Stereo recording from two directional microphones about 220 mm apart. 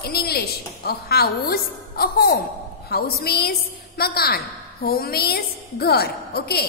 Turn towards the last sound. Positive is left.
turn(degrees=45)  # may be behind; listen again after turning